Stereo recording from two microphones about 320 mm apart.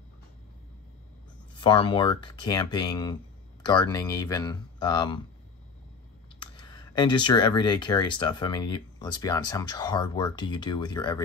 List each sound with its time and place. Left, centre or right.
1.5 s speech: centre
6.4 s speech: centre